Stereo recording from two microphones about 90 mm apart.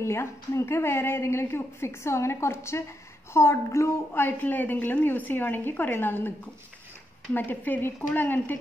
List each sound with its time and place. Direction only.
0.0 s a woman's voice: 30° left (ahead or behind)
7.3 s a woman's voice: 20° left (ahead or behind)